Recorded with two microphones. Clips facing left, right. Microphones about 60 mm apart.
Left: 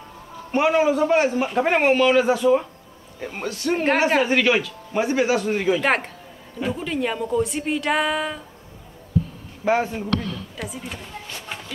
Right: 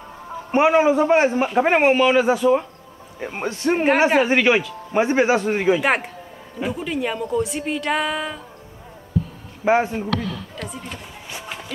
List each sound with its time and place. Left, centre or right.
0.5 s speech: right
3.2 s speech: right
5.8 s a woman's voice: centre
9.7 s speech: centre
10.0 s a woman's voice: centre
11.2 s a sound: centre